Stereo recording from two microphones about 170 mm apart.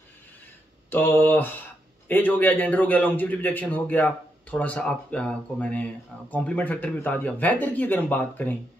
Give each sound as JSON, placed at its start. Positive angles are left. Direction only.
{"t": 0.8, "sound": "a man's voice", "side_deg": 10}